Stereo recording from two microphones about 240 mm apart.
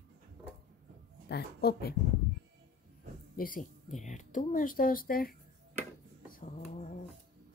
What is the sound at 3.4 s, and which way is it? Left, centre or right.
Speech, left.